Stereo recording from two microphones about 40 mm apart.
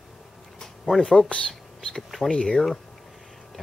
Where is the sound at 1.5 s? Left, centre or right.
Centre.